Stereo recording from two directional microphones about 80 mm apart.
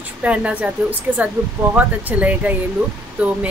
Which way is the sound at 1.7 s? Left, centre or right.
Centre.